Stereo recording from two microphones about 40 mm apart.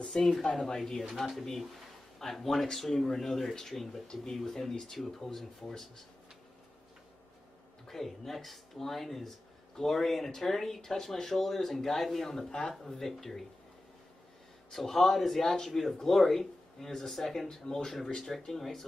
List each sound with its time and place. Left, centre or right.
0.0 s speech: centre
2.1 s speech: centre
4.1 s speech: centre
4.4 s speech: centre
7.9 s speech: centre
13.0 s speech: centre
14.7 s speech: centre